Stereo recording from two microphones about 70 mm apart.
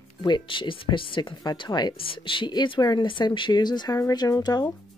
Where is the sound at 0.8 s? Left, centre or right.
Left.